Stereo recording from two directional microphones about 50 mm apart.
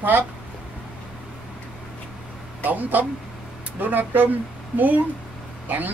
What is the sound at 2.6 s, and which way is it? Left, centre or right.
Speech, right.